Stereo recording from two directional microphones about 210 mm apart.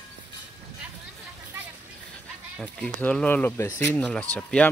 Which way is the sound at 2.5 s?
5° left (ahead or behind).